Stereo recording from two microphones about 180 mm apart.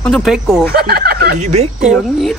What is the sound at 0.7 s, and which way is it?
Speech, 55° right (ahead or behind).